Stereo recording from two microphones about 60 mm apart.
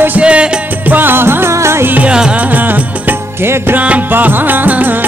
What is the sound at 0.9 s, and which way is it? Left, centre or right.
Music, right.